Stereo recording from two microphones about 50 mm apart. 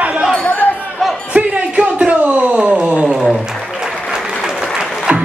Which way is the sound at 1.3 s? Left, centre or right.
Right.